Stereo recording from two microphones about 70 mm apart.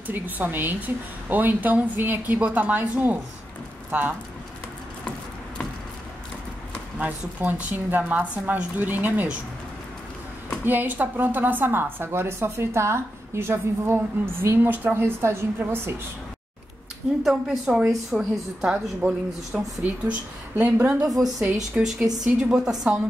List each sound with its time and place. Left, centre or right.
0.0 s a woman's voice: right
7.0 s a woman's voice: right
10.6 s speech: right
17.2 s a woman's voice: centre
19.5 s a woman's voice: right
21.7 s speech: centre